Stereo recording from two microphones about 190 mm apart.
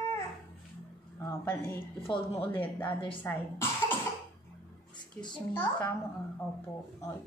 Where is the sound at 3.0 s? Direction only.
25° left (ahead or behind).